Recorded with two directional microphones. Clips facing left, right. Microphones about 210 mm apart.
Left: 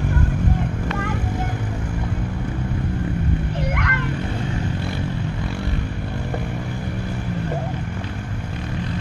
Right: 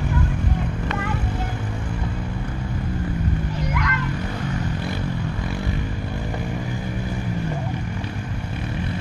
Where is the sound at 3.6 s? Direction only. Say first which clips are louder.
Left 1 dB; 55° left (ahead or behind).